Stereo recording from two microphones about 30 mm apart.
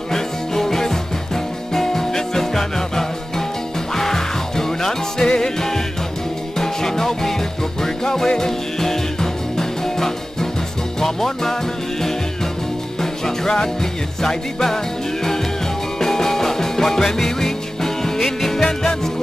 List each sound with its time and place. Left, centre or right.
0.1 s music: centre
13.0 s music: centre
16.0 s music: centre